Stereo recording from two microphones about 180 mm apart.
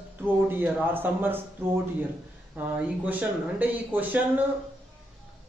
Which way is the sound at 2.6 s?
10° right (ahead or behind).